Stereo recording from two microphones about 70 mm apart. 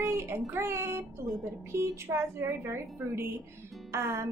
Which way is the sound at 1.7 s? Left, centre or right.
Right.